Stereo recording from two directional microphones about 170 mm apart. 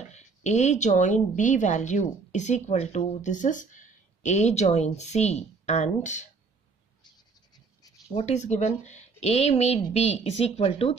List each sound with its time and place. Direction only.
0.1 s speech: 40° left (ahead or behind)
7.1 s a sound: 25° left (ahead or behind)
8.1 s speech: 40° left (ahead or behind)